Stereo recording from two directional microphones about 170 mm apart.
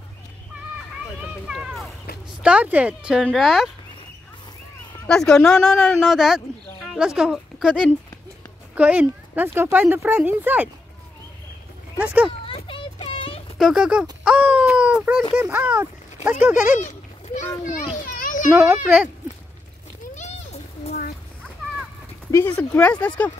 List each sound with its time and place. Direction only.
1.2 s a sound: 5° right (ahead or behind)
2.4 s speech: 10° right (ahead or behind)
3.3 s a sound: centre (ahead or behind)
5.0 s speech: 5° left (ahead or behind)
12.0 s speech: 10° right (ahead or behind)
12.3 s a sound: 30° left (ahead or behind)
13.6 s a sound: centre (ahead or behind)
15.3 s speech: 10° right (ahead or behind)
16.8 s goat: 45° left (ahead or behind)
18.0 s children playing: 50° left (ahead or behind)
18.5 s speech: 10° right (ahead or behind)
22.3 s speech: 10° left (ahead or behind)